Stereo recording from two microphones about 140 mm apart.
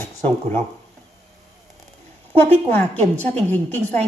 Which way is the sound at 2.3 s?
15° left (ahead or behind).